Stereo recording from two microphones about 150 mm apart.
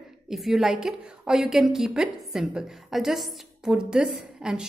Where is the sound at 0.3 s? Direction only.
Centre (ahead or behind).